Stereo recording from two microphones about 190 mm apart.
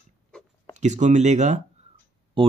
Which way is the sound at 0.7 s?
40° right (ahead or behind).